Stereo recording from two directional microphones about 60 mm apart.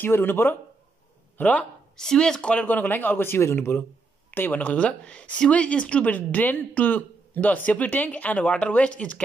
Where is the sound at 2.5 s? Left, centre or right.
Left.